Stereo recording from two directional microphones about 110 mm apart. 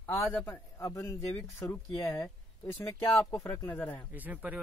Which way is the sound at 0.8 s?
25° left (ahead or behind).